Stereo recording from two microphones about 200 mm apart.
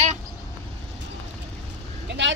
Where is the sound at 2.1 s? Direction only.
65° right (ahead or behind).